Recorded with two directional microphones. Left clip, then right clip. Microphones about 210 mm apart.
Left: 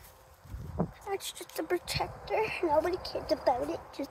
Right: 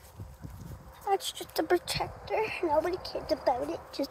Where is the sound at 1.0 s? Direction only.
5° right (ahead or behind).